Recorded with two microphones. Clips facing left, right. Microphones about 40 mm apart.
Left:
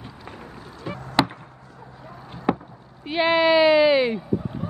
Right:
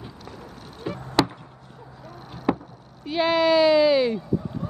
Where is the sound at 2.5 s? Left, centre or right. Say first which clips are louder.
Left 1 dB; centre.